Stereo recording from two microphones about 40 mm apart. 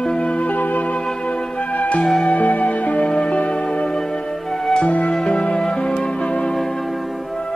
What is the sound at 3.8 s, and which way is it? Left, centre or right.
Music, centre.